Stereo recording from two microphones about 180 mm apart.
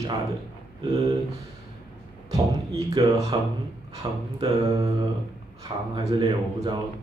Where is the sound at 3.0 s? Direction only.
25° right (ahead or behind).